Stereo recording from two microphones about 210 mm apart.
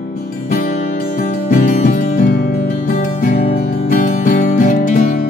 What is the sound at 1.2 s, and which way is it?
Music, 40° left (ahead or behind).